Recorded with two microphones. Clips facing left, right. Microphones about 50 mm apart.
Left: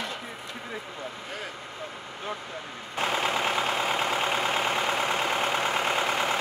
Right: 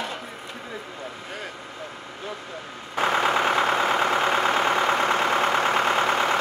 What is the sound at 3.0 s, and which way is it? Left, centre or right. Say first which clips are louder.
Vehicle: right 5 dB; right.